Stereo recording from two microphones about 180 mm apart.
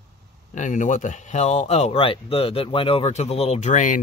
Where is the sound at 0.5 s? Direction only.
45° left (ahead or behind).